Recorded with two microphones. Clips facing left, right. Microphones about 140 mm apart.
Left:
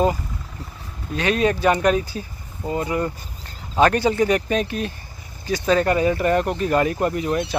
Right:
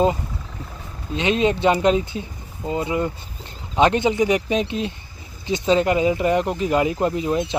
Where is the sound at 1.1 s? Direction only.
20° right (ahead or behind).